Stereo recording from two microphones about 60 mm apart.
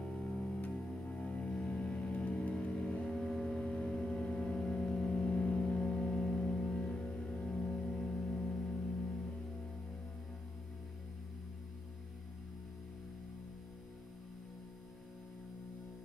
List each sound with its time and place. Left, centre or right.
0.0 s music: centre
3.0 s vehicle: centre